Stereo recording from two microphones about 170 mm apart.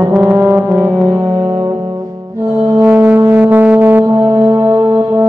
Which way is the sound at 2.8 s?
10° right (ahead or behind).